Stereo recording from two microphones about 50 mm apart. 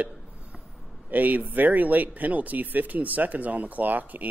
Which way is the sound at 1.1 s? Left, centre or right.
Right.